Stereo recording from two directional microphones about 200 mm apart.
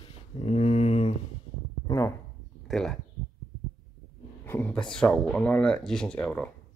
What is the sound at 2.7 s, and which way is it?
Speech, centre (ahead or behind).